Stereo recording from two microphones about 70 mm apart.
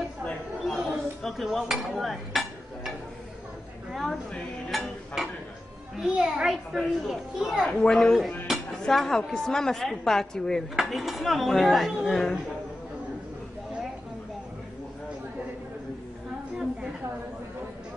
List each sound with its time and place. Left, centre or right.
0.7 s dishes: centre
3.9 s a woman's voice: centre
7.6 s a woman's voice: centre
7.9 s a child's voice: centre
8.5 s dishes: centre
8.8 s a woman's voice: centre